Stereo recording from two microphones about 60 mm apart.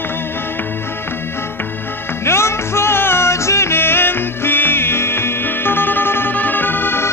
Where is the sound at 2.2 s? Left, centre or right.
Left.